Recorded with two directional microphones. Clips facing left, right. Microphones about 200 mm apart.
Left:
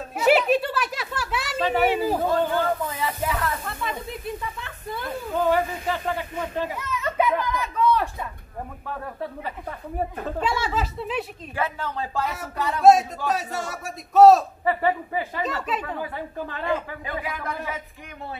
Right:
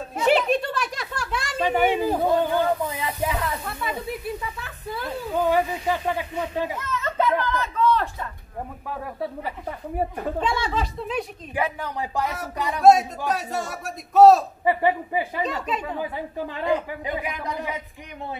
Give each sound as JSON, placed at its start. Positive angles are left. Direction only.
{"t": 0.1, "sound": "a sound", "side_deg": 5}
{"t": 2.1, "sound": "speech", "side_deg": -10}
{"t": 5.0, "sound": "speech", "side_deg": 50}
{"t": 5.4, "sound": "speech", "side_deg": -15}
{"t": 6.8, "sound": "children playing", "side_deg": 15}
{"t": 7.4, "sound": "a sound", "side_deg": 15}
{"t": 8.8, "sound": "speech", "side_deg": -10}
{"t": 10.4, "sound": "a man's voice", "side_deg": 5}
{"t": 11.5, "sound": "speech", "side_deg": -15}
{"t": 13.3, "sound": "a man's voice", "side_deg": 0}
{"t": 14.6, "sound": "speech", "side_deg": -15}